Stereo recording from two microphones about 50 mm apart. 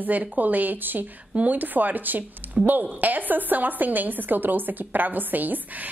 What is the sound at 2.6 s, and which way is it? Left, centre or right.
Speech, right.